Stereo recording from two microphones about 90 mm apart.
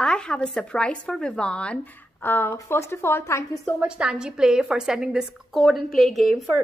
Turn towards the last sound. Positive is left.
turn(degrees=0)  # may be behind; listen again after turning